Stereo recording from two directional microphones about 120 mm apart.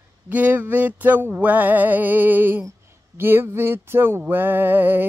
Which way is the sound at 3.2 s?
20° right (ahead or behind).